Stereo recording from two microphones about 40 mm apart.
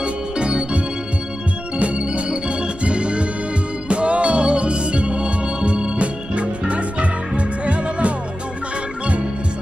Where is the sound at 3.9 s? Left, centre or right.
Right.